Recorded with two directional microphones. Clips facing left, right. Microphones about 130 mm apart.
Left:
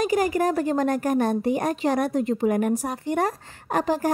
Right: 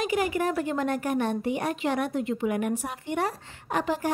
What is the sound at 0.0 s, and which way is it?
A woman's voice, 40° left (ahead or behind).